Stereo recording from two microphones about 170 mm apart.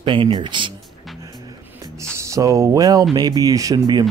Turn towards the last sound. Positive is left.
turn(degrees=-20)  # may be behind; listen again after turning